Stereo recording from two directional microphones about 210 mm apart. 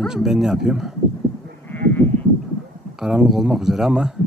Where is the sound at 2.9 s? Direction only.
5° right (ahead or behind).